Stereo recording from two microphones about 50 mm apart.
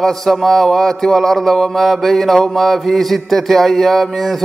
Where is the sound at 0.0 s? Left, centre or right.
Centre.